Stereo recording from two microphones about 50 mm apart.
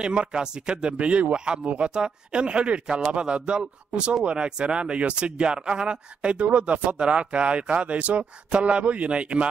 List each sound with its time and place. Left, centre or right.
0.0 s speech: centre